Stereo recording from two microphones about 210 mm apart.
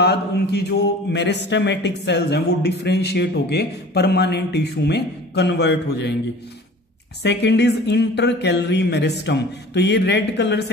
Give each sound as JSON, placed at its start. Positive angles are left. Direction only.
{"t": 0.0, "sound": "mantra", "side_deg": 50}
{"t": 7.2, "sound": "mantra", "side_deg": 55}